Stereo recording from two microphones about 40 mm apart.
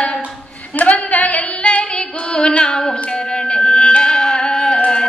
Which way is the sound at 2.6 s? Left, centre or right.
Centre.